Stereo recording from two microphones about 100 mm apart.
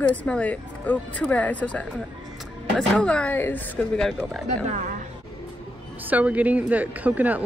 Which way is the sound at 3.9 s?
5° left (ahead or behind).